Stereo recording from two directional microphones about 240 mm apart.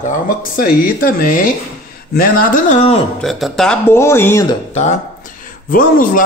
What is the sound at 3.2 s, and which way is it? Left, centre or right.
Speech, centre.